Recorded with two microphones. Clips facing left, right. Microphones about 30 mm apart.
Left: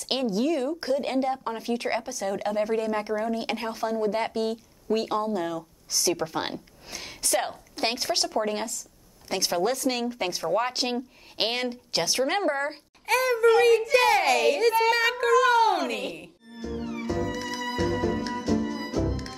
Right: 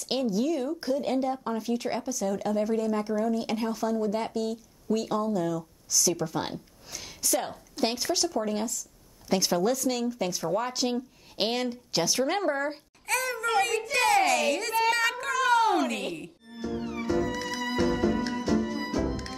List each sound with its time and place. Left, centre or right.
0.0 s speech: left
9.3 s a child's voice: centre
9.8 s speech: left
13.7 s a child's voice: centre
14.0 s a child's voice: centre
15.0 s speech: centre
15.2 s music: centre